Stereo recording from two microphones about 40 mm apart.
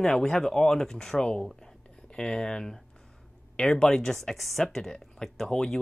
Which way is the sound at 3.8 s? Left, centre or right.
Centre.